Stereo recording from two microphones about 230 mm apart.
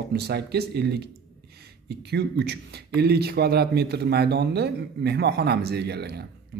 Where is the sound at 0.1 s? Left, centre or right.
Right.